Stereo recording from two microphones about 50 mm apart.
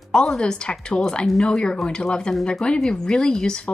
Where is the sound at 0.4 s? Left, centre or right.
Centre.